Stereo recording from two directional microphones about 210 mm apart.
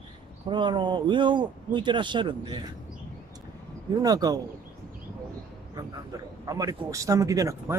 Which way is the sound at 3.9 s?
15° right (ahead or behind).